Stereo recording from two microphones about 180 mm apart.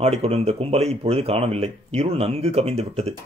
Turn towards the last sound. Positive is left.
turn(degrees=-35)  # may be behind; listen again after turning